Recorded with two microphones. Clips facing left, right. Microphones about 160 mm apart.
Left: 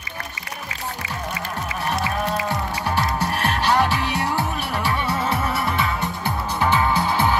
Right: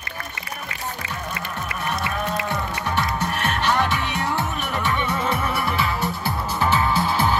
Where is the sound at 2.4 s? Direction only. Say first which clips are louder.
Left 2 dB; 40° left (ahead or behind).